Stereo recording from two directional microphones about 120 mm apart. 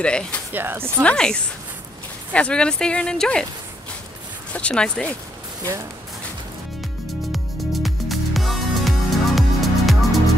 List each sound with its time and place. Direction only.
0.0 s speech: 10° left (ahead or behind)
0.5 s speech: 15° right (ahead or behind)
1.0 s speech: 5° left (ahead or behind)
4.5 s speech: 10° left (ahead or behind)
7.3 s music: centre (ahead or behind)